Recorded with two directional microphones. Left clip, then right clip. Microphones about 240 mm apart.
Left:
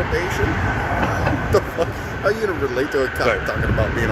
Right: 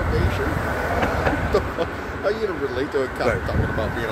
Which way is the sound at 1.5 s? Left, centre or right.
Left.